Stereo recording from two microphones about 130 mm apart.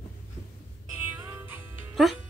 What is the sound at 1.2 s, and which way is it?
Music, 15° right (ahead or behind).